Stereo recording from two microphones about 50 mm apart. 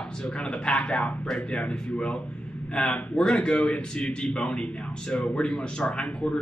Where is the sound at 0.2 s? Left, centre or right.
Centre.